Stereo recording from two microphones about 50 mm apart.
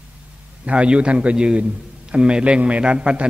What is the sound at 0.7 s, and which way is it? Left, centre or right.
A man's voice, right.